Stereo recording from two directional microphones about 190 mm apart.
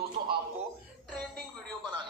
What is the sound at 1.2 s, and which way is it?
Music, 5° left (ahead or behind).